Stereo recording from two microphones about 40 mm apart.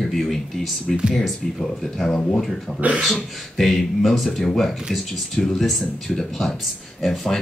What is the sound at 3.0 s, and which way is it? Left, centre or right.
Speech, centre.